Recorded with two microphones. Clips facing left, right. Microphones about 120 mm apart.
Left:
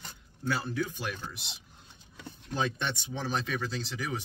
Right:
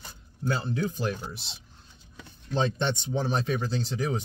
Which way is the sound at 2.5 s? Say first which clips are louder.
Right 5 dB; 30° right (ahead or behind).